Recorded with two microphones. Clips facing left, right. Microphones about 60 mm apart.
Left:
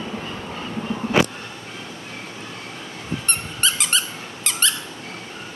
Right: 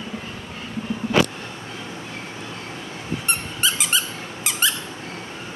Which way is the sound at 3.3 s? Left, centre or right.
Centre.